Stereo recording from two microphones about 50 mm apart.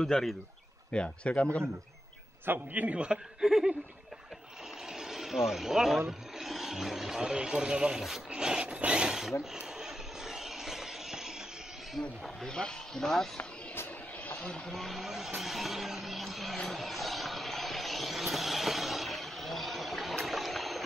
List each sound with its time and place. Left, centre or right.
0.0 s speech: centre
0.9 s speech: left
2.4 s a man's voice: right
3.3 s a sound: centre
4.9 s speech: centre
8.4 s zipper: centre
9.4 s vehicle: centre
12.0 s speech: centre
14.7 s a sound: centre
16.6 s vehicle: centre
20.2 s water: centre